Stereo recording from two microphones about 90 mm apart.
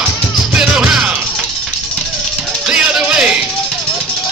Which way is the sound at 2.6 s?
10° right (ahead or behind).